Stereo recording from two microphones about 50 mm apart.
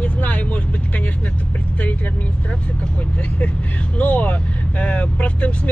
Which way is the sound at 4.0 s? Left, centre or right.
Left.